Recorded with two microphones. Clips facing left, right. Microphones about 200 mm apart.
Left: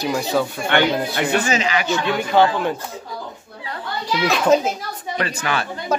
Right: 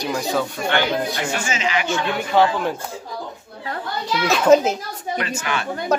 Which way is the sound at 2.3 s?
Centre (ahead or behind).